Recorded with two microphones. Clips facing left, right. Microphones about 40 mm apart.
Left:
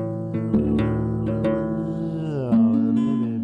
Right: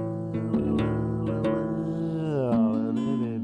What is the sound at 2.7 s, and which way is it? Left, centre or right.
Music, left.